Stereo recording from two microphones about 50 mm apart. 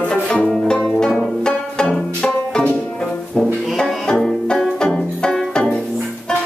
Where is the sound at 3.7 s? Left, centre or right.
Centre.